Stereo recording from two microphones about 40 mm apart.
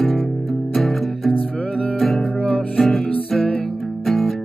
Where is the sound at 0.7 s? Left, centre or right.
Centre.